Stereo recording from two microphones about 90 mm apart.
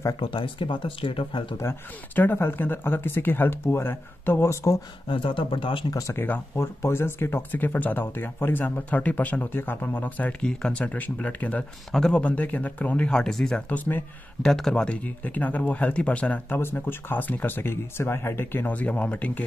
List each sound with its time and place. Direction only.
0.2 s speech: 70° left (ahead or behind)
1.6 s speech: 25° left (ahead or behind)
5.0 s speech: 70° left (ahead or behind)
5.9 s speech: 40° left (ahead or behind)
6.1 s speech: 25° left (ahead or behind)
14.4 s speech: 5° left (ahead or behind)